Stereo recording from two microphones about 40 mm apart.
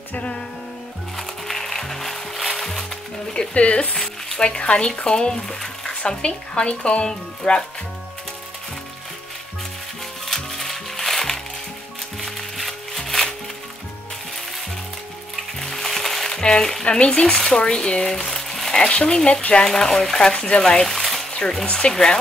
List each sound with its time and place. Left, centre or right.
0.1 s music: left
1.1 s music: centre
3.5 s speech: left; by 6.1 s centre
6.2 s speech: left
10.2 s music: centre
15.6 s music: centre
16.8 s speech: left
18.8 s speech: left
20.9 s a sound: centre
21.9 s speech: centre